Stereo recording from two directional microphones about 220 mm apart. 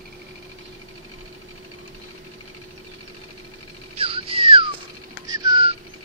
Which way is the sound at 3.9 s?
25° right (ahead or behind).